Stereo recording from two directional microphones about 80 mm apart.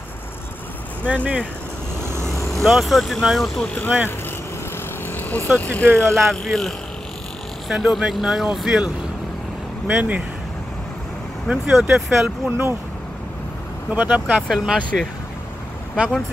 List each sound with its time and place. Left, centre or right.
1.0 s speech: centre
2.5 s speech: centre
3.6 s speech: centre
5.1 s speech: left
5.9 s speech: centre
11.4 s speech: centre
12.4 s speech: right
13.9 s speech: centre
14.5 s speech: centre